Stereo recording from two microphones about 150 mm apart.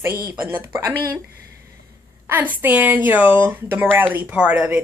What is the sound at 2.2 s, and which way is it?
Speech, 15° right (ahead or behind).